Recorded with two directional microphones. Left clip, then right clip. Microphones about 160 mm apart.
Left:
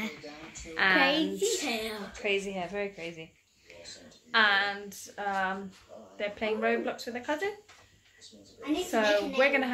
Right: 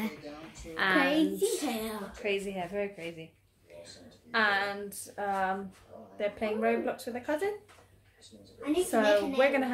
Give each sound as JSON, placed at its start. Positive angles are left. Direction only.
{"t": 0.7, "sound": "a woman's voice", "side_deg": 0}
{"t": 1.0, "sound": "a woman's voice", "side_deg": -20}
{"t": 2.2, "sound": "a woman's voice", "side_deg": 20}
{"t": 4.3, "sound": "speech", "side_deg": -10}
{"t": 8.9, "sound": "speech", "side_deg": -5}